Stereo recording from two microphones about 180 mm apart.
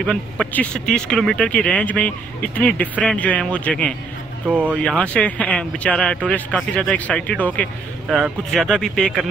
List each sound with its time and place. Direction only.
0.0 s speech: 5° left (ahead or behind)
4.5 s speech: 10° right (ahead or behind)
4.7 s speech: 5° left (ahead or behind)